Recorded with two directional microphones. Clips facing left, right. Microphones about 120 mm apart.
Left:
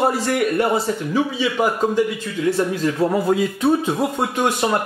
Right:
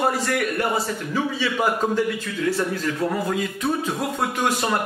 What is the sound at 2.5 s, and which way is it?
Speech, 25° left (ahead or behind).